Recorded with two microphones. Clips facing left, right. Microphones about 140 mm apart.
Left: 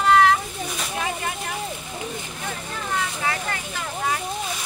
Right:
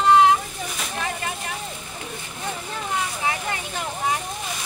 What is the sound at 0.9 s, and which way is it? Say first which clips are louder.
Speech: left 1 dB; 5° left (ahead or behind).